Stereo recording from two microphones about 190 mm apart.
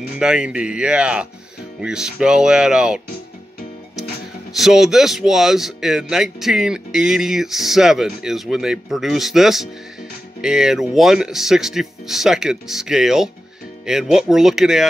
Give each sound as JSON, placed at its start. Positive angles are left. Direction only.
{"t": 0.2, "sound": "speech", "side_deg": -5}
{"t": 4.6, "sound": "speech", "side_deg": 0}